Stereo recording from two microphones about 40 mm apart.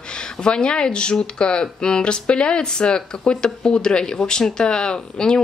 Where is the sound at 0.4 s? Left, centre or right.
Centre.